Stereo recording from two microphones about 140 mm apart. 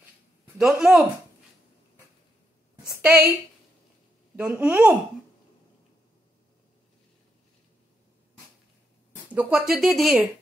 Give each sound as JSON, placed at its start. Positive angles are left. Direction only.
{"t": 0.6, "sound": "speech", "side_deg": -5}
{"t": 2.8, "sound": "a sound", "side_deg": -10}
{"t": 4.4, "sound": "speech", "side_deg": -10}
{"t": 9.1, "sound": "speech", "side_deg": -10}